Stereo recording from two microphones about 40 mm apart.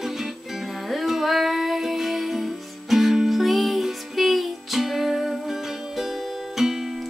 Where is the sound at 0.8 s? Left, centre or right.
Centre.